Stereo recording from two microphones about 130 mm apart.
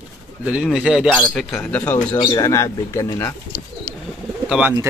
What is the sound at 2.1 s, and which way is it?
Speech, 35° left (ahead or behind).